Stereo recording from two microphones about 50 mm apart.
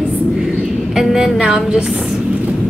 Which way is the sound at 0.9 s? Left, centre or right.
Centre.